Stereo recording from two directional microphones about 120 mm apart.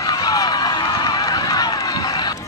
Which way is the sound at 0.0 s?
30° left (ahead or behind).